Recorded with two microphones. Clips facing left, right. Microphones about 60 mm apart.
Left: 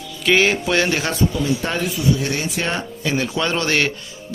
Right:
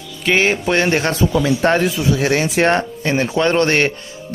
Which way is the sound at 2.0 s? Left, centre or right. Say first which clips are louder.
Right 4 dB; right.